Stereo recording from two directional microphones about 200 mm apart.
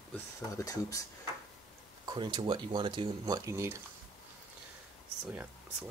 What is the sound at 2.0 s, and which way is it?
Speech, 20° right (ahead or behind).